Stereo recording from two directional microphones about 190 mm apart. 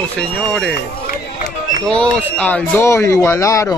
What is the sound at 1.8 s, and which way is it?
Speech, 5° left (ahead or behind).